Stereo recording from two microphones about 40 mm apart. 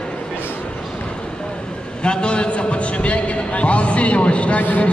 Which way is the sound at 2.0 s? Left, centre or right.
Left.